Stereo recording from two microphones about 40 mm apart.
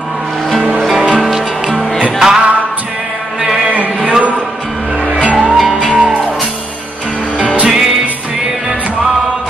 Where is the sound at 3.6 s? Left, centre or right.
Right.